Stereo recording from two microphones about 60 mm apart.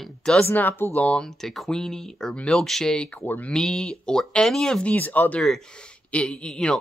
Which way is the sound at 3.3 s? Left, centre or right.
Left.